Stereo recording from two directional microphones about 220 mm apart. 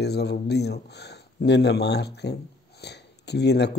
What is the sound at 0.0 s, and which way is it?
A man's voice, 50° left (ahead or behind).